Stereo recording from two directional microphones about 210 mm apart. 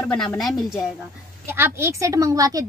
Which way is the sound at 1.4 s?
10° right (ahead or behind).